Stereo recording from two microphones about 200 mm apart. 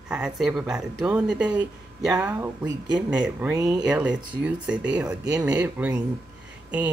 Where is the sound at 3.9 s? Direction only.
5° right (ahead or behind).